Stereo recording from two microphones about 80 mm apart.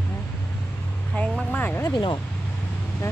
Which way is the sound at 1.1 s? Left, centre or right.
Centre.